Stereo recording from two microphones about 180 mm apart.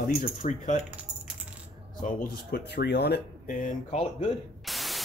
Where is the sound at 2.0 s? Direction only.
50° left (ahead or behind).